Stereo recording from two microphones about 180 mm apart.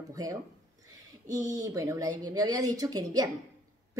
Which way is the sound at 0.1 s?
20° right (ahead or behind).